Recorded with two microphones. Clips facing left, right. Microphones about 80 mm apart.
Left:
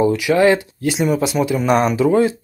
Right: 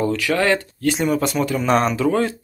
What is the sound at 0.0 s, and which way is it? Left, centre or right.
Speech, centre.